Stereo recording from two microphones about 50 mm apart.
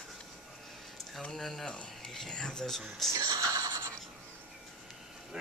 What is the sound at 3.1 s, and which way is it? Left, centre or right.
Neigh, right.